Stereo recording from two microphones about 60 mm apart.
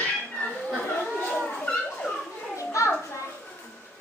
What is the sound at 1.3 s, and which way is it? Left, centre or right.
Dog, centre.